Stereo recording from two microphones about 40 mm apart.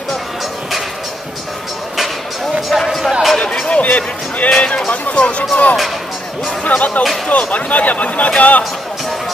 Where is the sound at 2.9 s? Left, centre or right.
Centre.